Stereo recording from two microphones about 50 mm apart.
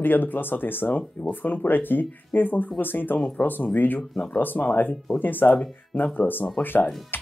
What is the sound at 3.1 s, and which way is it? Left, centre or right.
Speech, left.